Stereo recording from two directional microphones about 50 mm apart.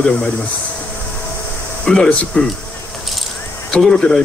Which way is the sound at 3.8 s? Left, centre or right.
Centre.